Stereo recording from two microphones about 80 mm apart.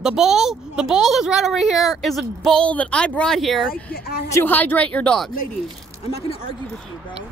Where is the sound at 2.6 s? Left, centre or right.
Centre.